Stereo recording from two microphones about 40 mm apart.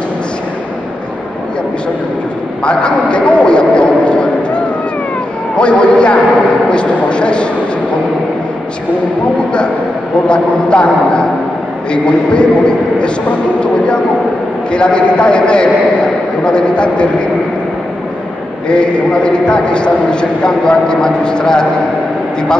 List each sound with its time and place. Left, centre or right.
2.6 s a sound: left
5.6 s a man's voice: left
10.2 s a man's voice: left
14.7 s a man's voice: left
18.7 s a man's voice: left